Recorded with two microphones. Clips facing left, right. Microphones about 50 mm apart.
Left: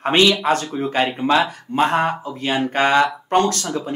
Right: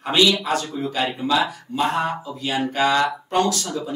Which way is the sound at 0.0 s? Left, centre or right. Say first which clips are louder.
Left 3 dB; left.